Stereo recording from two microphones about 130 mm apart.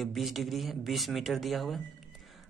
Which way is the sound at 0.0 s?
Centre (ahead or behind).